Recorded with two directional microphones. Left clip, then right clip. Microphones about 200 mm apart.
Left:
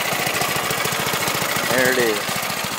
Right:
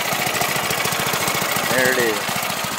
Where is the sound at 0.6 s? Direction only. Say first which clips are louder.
Right 1 dB; 10° right (ahead or behind).